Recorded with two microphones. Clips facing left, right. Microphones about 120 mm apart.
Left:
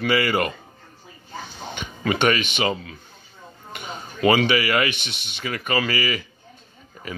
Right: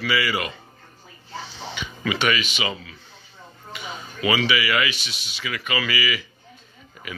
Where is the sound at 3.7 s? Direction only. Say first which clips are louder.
Left 1 dB; 50° left (ahead or behind).